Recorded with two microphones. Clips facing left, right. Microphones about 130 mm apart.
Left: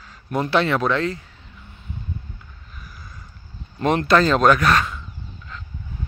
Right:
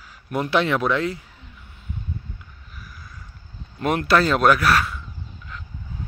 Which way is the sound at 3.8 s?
5° right (ahead or behind).